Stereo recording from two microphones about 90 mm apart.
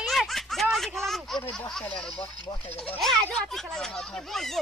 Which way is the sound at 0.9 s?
5° left (ahead or behind).